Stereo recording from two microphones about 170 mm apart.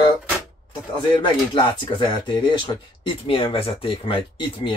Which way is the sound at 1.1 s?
30° left (ahead or behind).